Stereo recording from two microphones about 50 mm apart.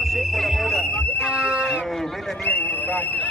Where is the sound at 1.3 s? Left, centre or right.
Right.